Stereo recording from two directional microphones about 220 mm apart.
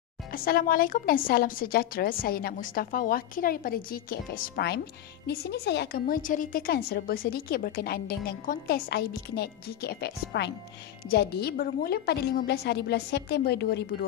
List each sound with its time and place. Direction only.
0.3 s a woman's voice: 40° left (ahead or behind)